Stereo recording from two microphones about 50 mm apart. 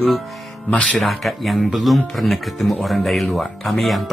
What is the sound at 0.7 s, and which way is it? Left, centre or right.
Speech, left.